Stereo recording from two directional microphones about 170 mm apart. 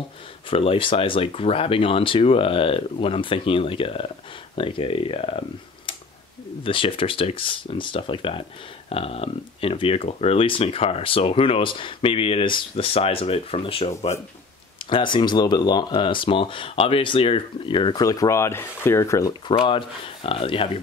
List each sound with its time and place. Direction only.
0.5 s speech: 30° left (ahead or behind)
6.6 s speech: 30° left (ahead or behind)
19.5 s speech: 30° left (ahead or behind)